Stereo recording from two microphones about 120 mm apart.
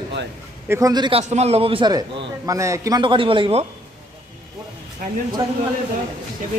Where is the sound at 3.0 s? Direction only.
45° right (ahead or behind).